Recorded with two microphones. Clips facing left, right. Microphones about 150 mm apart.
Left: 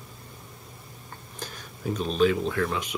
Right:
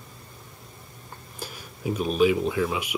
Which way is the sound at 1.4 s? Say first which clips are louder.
Right 2 dB; 10° right (ahead or behind).